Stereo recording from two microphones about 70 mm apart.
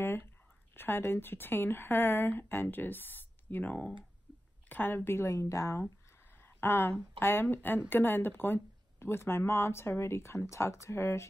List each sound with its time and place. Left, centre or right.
0.7 s speech: left
6.3 s speech: left